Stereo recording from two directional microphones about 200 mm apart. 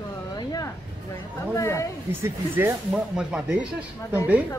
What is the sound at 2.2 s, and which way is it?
Speech, 10° right (ahead or behind).